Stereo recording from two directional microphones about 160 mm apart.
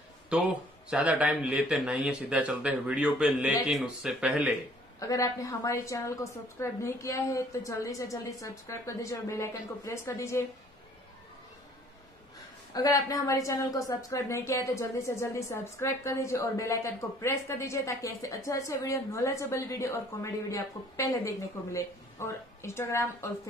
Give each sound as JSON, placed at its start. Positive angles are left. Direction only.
{"t": 0.3, "sound": "speech", "side_deg": -5}
{"t": 5.0, "sound": "a woman's voice", "side_deg": 20}
{"t": 12.7, "sound": "a woman's voice", "side_deg": 25}